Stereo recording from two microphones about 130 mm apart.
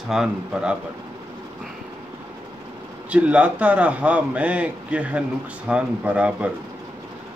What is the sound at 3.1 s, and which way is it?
A man's voice, 10° right (ahead or behind).